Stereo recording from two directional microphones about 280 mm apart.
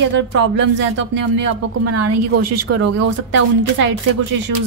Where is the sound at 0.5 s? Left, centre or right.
Right.